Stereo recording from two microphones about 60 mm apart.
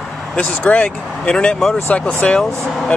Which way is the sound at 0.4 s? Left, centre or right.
Left.